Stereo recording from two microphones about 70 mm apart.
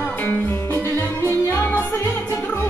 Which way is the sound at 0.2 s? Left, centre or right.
Left.